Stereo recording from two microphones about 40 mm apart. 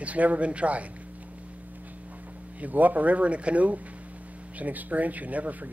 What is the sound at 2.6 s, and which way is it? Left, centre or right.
Speech, right.